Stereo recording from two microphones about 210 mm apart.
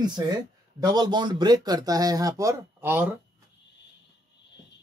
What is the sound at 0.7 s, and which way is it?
Speech, 20° right (ahead or behind).